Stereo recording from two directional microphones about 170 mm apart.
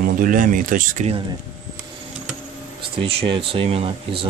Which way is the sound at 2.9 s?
35° right (ahead or behind).